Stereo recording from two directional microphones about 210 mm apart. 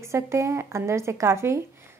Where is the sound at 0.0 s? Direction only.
15° right (ahead or behind).